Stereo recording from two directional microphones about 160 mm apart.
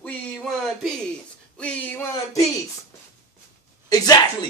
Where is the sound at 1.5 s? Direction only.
10° left (ahead or behind).